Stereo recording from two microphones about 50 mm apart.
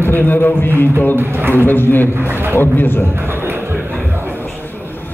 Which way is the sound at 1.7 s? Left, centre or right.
Left.